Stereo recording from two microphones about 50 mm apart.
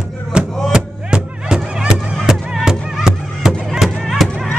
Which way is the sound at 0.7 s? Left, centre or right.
Centre.